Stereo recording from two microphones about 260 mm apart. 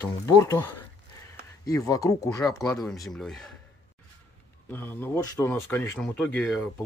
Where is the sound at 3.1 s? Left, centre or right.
Centre.